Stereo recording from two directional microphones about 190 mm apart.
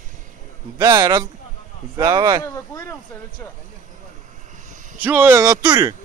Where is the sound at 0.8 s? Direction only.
20° right (ahead or behind).